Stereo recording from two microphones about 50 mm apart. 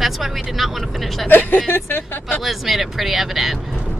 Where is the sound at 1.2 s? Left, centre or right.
Left.